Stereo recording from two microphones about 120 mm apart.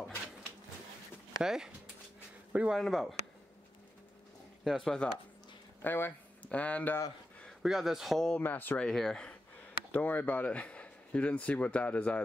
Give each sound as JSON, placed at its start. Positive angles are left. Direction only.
{"t": 1.4, "sound": "speech", "side_deg": -5}
{"t": 2.8, "sound": "speech", "side_deg": 0}
{"t": 4.6, "sound": "speech", "side_deg": 5}
{"t": 5.8, "sound": "speech", "side_deg": 15}
{"t": 7.6, "sound": "speech", "side_deg": -5}
{"t": 8.4, "sound": "speech", "side_deg": 15}
{"t": 8.8, "sound": "speech", "side_deg": 5}